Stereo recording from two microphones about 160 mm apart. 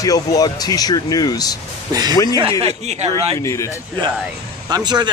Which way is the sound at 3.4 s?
20° left (ahead or behind).